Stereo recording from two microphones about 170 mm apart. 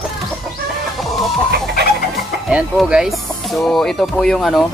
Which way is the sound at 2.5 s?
5° right (ahead or behind).